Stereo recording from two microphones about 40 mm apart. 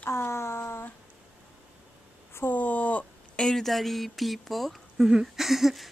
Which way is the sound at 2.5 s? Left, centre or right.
Left.